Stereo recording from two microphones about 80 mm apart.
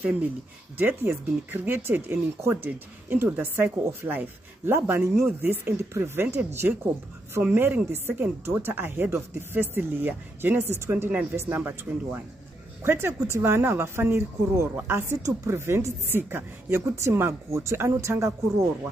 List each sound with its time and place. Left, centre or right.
0.7 s a woman's voice: right